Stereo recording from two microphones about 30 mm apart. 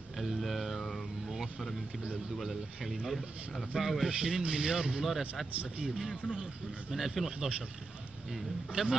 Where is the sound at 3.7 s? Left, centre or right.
Right.